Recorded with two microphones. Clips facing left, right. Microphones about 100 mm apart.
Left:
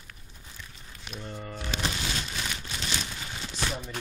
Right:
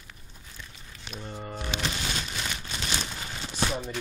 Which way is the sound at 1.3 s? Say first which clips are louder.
Right 2 dB; 15° right (ahead or behind).